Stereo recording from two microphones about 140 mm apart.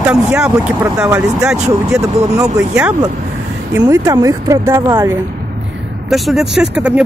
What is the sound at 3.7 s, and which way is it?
Speech, 20° right (ahead or behind).